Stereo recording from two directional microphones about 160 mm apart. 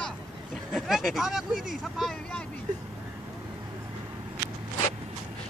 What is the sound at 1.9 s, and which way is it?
Speech, centre (ahead or behind).